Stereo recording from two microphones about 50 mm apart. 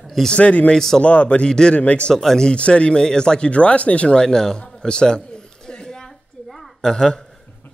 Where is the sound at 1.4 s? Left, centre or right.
Centre.